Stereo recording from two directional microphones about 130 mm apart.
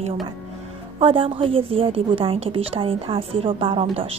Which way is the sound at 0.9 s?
45° right (ahead or behind).